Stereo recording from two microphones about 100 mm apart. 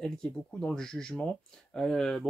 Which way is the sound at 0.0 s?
10° left (ahead or behind).